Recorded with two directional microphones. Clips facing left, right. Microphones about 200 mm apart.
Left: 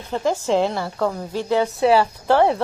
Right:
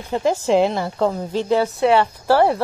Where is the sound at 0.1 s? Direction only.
15° right (ahead or behind).